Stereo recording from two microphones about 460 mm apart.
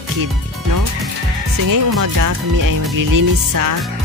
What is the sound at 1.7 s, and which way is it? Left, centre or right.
Speech, right.